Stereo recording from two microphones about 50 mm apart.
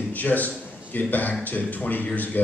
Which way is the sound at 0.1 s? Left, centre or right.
Left.